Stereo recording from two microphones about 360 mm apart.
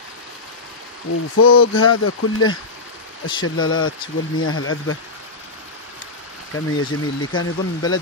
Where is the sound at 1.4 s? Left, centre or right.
Left.